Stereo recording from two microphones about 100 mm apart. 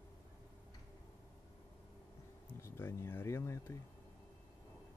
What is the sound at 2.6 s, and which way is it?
Speech, 25° left (ahead or behind).